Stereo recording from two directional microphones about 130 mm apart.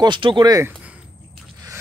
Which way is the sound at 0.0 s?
40° right (ahead or behind).